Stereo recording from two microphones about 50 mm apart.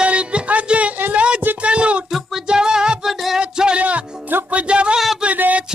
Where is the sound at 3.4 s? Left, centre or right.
Centre.